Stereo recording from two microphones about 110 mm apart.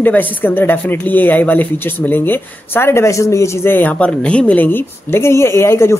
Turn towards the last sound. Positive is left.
turn(degrees=25)  # may be behind; listen again after turning